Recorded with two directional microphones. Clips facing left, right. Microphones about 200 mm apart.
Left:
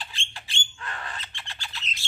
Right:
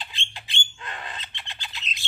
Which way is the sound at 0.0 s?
20° right (ahead or behind).